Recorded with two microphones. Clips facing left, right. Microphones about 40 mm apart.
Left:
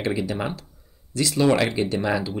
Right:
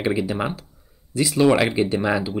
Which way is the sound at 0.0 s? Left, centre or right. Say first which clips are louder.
Right 3 dB; centre.